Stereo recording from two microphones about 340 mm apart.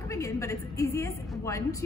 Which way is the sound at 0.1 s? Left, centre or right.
Centre.